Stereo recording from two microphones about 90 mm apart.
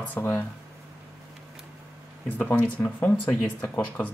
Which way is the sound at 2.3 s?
20° left (ahead or behind).